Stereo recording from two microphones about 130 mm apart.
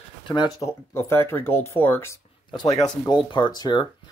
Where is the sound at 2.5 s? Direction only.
35° left (ahead or behind).